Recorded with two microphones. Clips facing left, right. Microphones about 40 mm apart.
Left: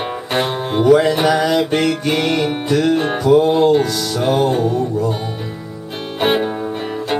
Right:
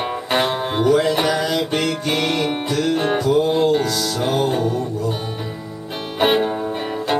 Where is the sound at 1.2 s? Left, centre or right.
Left.